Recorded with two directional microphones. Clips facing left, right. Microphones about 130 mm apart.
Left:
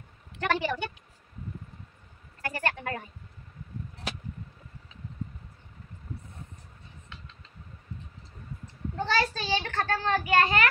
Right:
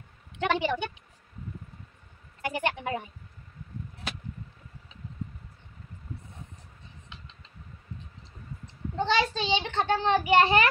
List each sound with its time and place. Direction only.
0.4 s a woman's voice: 15° right (ahead or behind)
2.4 s a woman's voice: 15° right (ahead or behind)
8.9 s a child's voice: 20° right (ahead or behind)